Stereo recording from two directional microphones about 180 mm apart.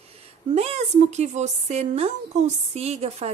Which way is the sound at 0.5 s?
35° right (ahead or behind).